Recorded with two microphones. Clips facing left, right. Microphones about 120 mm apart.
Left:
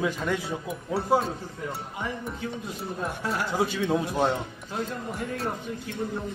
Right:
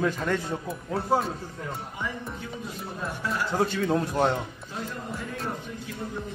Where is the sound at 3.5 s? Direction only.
5° left (ahead or behind).